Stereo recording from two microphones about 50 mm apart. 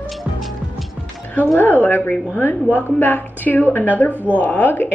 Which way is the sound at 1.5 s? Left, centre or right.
Left.